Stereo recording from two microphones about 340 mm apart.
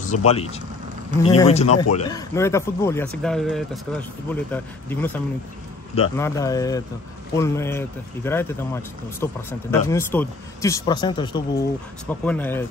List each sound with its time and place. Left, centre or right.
0.0 s speech: centre